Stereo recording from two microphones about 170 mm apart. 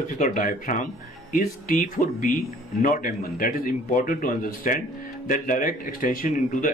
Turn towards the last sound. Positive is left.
turn(degrees=50)  # may be behind; listen again after turning